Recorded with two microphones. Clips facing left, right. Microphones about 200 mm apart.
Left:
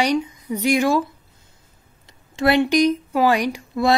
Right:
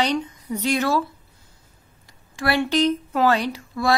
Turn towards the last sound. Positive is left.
turn(degrees=20)  # may be behind; listen again after turning